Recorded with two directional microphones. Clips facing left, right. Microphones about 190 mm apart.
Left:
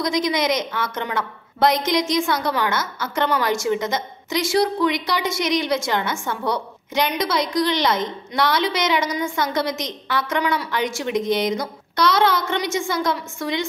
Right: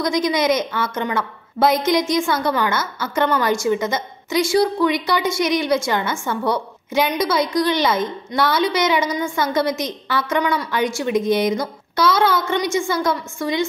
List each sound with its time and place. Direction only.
0.0 s a woman's voice: centre (ahead or behind)